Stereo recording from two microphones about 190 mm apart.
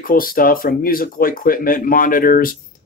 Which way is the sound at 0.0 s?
50° left (ahead or behind).